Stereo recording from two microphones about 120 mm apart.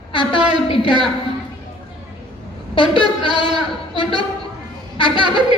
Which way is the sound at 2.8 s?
45° left (ahead or behind).